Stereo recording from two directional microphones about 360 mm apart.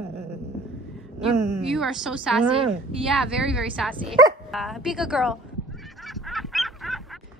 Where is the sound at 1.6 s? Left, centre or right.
Centre.